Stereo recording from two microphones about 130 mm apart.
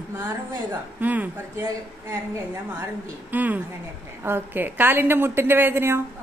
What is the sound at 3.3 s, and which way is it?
A woman's voice, 15° right (ahead or behind).